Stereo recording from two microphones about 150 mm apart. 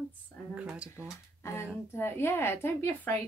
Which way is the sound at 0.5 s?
5° right (ahead or behind).